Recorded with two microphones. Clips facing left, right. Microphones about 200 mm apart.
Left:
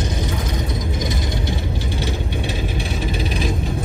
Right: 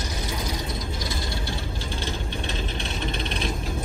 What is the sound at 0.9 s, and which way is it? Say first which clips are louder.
Vehicle: left 7 dB; 20° left (ahead or behind).